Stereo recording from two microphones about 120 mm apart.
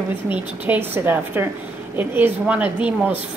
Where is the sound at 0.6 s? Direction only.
15° right (ahead or behind).